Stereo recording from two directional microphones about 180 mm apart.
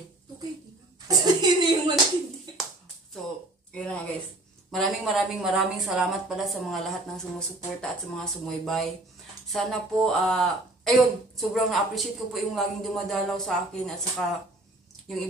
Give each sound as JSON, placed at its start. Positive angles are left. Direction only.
{"t": 1.0, "sound": "clapping", "side_deg": -20}
{"t": 3.7, "sound": "a sound", "side_deg": 5}
{"t": 4.6, "sound": "speech", "side_deg": 0}